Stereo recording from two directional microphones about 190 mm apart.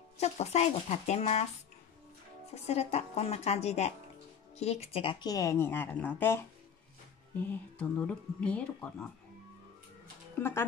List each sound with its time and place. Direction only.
0.2 s speech: 35° left (ahead or behind)
2.5 s speech: 35° left (ahead or behind); by 9.1 s 5° left (ahead or behind)
10.4 s speech: 10° left (ahead or behind)